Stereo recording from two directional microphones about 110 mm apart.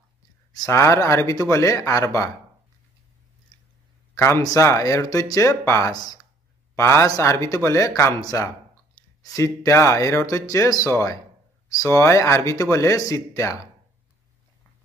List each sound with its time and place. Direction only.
0.5 s speech: 30° left (ahead or behind)
4.1 s speech: 30° left (ahead or behind)